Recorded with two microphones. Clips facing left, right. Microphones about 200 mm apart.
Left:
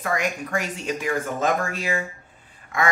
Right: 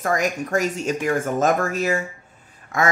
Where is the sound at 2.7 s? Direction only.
45° right (ahead or behind).